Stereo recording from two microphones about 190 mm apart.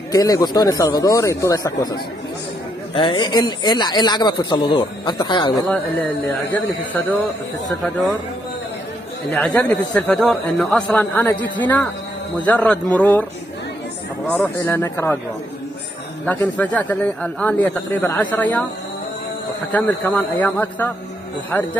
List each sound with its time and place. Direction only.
0.1 s speech: 20° left (ahead or behind)
6.5 s a man's voice: 10° left (ahead or behind)
9.3 s a man's voice: 10° left (ahead or behind)
14.2 s a man's voice: 5° left (ahead or behind)
16.3 s a man's voice: 10° left (ahead or behind)
19.7 s a man's voice: 10° left (ahead or behind)